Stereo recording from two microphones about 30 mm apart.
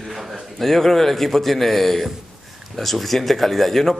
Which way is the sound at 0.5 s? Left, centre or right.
Centre.